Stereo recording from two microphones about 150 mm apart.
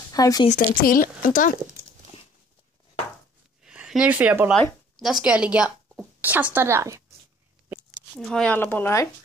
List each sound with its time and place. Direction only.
0.1 s speech: 25° left (ahead or behind)
0.5 s speech: 65° left (ahead or behind)
3.6 s a woman's voice: 5° right (ahead or behind)
8.2 s speech: 5° left (ahead or behind)